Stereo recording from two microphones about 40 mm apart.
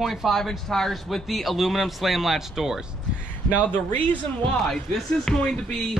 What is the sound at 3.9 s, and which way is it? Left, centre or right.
Speech, left.